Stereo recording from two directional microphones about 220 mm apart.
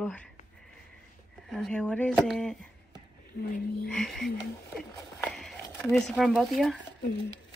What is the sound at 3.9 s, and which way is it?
Speech, centre (ahead or behind).